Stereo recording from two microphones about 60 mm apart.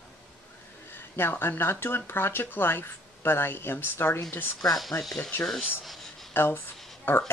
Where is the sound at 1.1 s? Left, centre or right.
Left.